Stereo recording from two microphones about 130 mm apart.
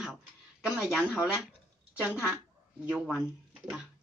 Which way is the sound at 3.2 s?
5° right (ahead or behind).